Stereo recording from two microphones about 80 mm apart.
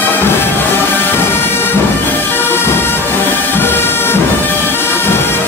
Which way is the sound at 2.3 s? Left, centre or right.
Left.